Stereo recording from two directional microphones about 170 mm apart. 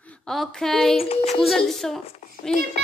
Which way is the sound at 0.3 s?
Centre (ahead or behind).